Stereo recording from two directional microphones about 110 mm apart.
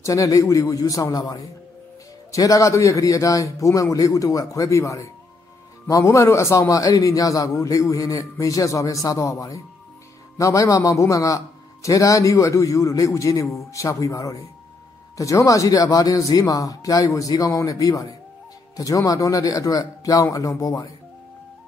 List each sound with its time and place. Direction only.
0.0 s a man's voice: 30° left (ahead or behind)